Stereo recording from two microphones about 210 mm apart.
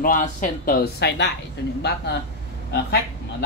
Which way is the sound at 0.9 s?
55° left (ahead or behind).